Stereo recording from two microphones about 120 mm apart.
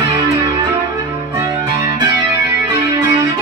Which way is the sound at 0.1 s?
35° right (ahead or behind).